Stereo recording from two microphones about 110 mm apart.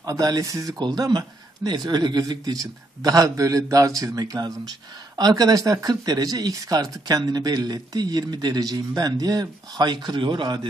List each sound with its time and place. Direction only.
0.0 s speech: 35° right (ahead or behind)